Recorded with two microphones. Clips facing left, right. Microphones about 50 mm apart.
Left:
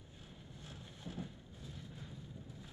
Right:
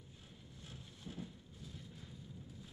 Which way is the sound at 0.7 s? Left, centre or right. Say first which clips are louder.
Left 2 dB; left.